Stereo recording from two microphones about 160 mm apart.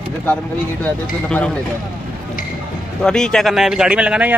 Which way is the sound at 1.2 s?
5° left (ahead or behind).